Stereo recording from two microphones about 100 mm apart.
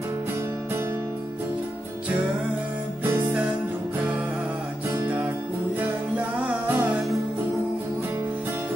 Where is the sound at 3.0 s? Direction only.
20° right (ahead or behind).